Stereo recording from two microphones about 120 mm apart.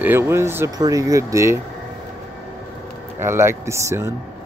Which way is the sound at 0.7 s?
30° right (ahead or behind).